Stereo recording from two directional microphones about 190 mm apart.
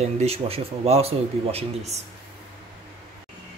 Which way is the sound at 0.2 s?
35° right (ahead or behind).